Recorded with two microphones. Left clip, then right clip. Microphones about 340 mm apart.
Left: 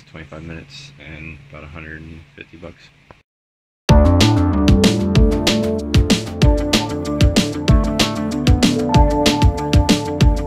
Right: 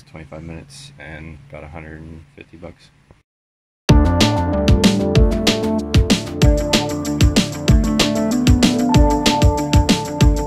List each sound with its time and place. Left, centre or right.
0.1 s speech: centre
3.8 s music: centre